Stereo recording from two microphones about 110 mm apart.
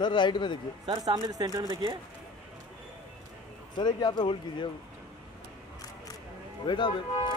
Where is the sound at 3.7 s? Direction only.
40° left (ahead or behind).